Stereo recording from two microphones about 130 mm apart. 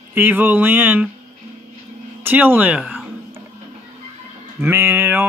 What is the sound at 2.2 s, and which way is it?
Mantra, 15° right (ahead or behind).